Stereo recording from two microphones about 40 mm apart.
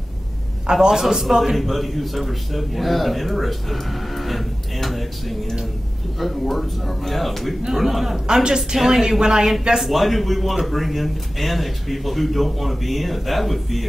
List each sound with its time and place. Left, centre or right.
0.7 s a woman's voice: centre
9.8 s speech: centre